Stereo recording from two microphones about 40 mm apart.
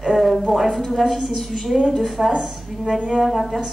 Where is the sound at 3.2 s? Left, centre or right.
Centre.